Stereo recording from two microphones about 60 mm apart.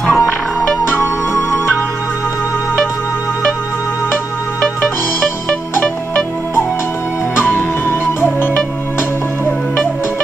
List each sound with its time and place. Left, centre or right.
0.0 s music: centre
0.8 s music: left
7.3 s music: left